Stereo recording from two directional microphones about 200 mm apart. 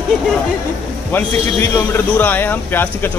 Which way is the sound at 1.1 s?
10° left (ahead or behind).